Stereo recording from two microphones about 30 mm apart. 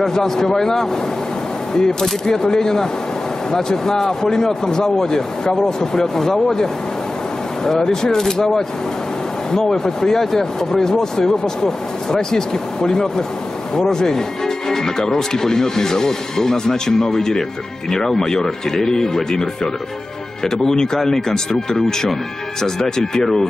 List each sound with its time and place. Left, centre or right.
0.0 s speech: centre